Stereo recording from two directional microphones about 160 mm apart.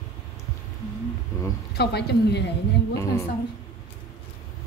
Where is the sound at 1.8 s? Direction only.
90° left.